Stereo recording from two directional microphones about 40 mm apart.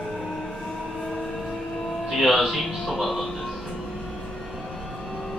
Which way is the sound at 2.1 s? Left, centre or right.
Centre.